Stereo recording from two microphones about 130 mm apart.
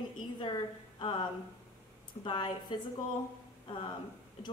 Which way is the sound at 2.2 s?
35° left (ahead or behind).